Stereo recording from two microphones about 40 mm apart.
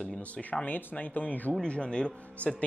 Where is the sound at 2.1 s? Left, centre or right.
Left.